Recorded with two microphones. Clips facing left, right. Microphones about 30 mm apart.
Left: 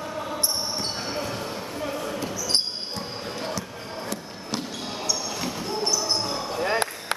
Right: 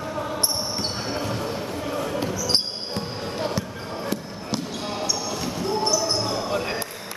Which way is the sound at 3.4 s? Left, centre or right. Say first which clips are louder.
Right 5 dB; centre.